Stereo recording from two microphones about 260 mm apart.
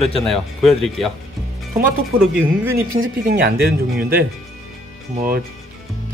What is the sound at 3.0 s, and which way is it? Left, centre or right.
Speech, right.